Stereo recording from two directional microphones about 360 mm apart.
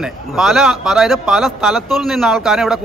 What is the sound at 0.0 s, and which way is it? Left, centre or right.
A man's voice, centre.